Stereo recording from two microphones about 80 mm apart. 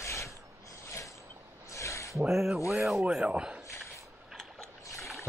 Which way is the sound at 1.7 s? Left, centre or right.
Left.